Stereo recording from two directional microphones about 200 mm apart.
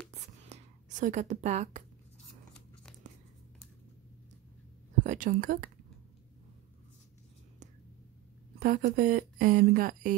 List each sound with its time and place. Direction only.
0.1 s whispering: 35° right (ahead or behind)
5.0 s a woman's voice: 40° right (ahead or behind)
8.5 s speech: 45° right (ahead or behind)